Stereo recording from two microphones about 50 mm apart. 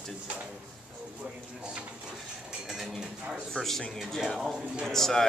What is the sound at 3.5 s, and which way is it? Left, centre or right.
Speech, centre.